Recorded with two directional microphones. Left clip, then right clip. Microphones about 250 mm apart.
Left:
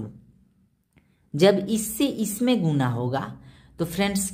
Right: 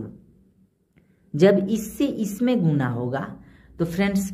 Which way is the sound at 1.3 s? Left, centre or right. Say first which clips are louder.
Right 1 dB; centre.